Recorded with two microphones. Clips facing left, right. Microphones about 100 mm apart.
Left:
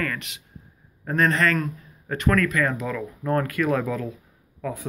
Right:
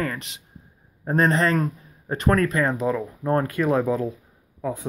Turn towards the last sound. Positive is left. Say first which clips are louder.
# right 2 dB
turn(degrees=-30)  # may be behind; listen again after turning